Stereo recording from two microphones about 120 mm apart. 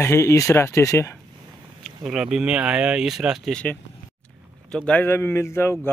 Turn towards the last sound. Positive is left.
turn(degrees=20)  # may be behind; listen again after turning